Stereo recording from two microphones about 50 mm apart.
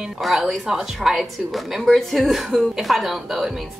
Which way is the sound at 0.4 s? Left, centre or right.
Centre.